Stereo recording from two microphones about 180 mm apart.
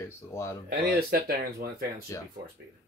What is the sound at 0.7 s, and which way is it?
Speech, 55° right (ahead or behind).